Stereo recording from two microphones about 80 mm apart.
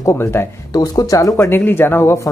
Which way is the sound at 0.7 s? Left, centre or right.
Left.